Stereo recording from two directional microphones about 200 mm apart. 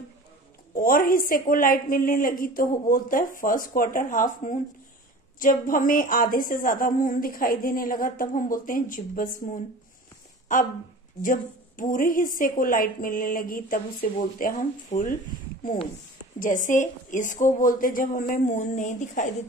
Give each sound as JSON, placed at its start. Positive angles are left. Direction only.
{"t": 0.7, "sound": "a woman's voice", "side_deg": 45}
{"t": 16.3, "sound": "a woman's voice", "side_deg": 40}